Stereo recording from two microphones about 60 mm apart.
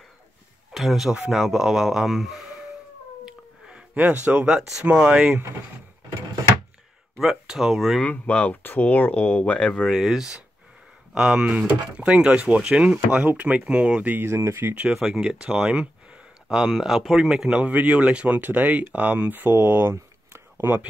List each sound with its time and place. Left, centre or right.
0.7 s speech: centre
3.3 s cat: centre
4.0 s speech: right
4.6 s speech: centre
4.8 s speech: centre
7.2 s speech: centre
8.0 s speech: centre
9.8 s speech: centre; by 13.6 s right
13.7 s speech: centre
14.2 s speech: right
14.9 s speech: centre
16.5 s speech: centre; by 19.9 s right
19.9 s a sound: right